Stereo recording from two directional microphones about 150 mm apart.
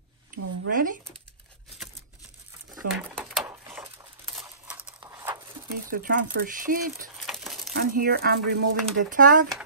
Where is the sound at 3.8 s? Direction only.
35° right (ahead or behind).